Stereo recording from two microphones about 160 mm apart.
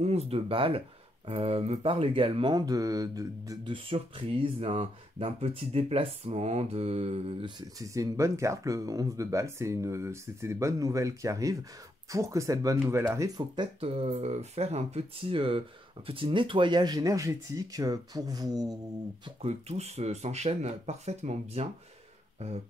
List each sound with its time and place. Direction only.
0.0 s speech: 40° right (ahead or behind); by 3.7 s 20° right (ahead or behind)
3.7 s speech: 35° right (ahead or behind)
7.8 s speech: 20° right (ahead or behind)
13.4 s speech: 30° right (ahead or behind)
19.4 s speech: 40° right (ahead or behind)